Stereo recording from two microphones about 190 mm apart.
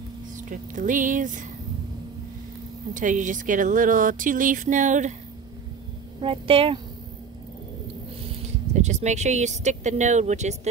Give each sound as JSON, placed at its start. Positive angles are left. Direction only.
{"t": 0.5, "sound": "speech", "side_deg": -45}
{"t": 2.9, "sound": "speech", "side_deg": -40}
{"t": 6.2, "sound": "speech", "side_deg": -30}
{"t": 8.8, "sound": "speech", "side_deg": -35}